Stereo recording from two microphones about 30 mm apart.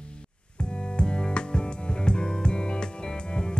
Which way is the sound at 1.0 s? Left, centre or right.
Left.